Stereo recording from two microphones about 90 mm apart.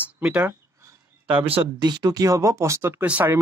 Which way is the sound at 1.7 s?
50° right (ahead or behind).